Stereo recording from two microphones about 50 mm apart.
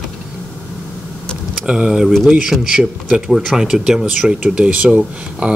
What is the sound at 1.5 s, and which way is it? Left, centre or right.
Speech, centre.